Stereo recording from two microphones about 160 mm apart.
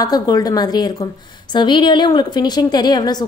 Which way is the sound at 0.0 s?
25° left (ahead or behind).